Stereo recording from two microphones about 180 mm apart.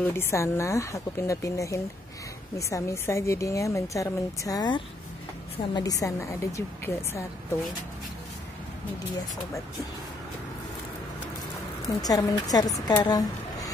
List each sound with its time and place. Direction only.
0.0 s a woman's voice: 15° left (ahead or behind)
12.0 s a woman's voice: 20° left (ahead or behind)